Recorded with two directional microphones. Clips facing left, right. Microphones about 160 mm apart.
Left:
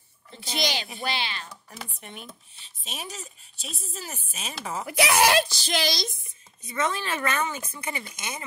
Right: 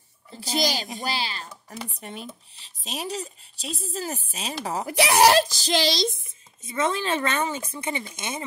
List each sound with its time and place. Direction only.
0.4 s speech: 40° right (ahead or behind)